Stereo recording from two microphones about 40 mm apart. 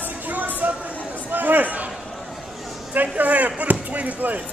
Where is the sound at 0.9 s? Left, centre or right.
Left.